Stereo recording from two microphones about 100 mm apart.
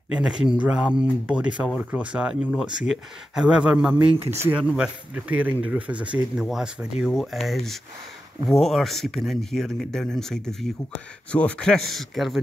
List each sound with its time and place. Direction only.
0.1 s speech: 5° right (ahead or behind)
4.3 s speech: 25° right (ahead or behind)
4.6 s speech: 10° right (ahead or behind)